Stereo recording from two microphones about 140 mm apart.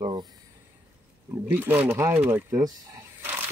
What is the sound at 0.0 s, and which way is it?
Speech, 30° right (ahead or behind).